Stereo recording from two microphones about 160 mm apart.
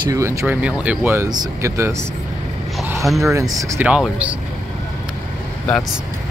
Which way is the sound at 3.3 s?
20° right (ahead or behind).